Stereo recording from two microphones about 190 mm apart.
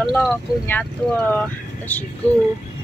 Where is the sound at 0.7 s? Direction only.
10° left (ahead or behind).